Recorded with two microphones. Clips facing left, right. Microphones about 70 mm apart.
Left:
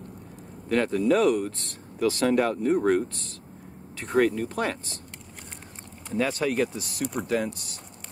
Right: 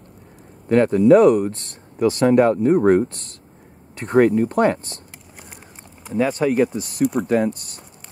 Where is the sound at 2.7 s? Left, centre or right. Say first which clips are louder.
Right 7 dB; right.